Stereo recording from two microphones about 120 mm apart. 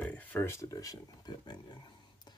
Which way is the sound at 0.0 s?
15° left (ahead or behind).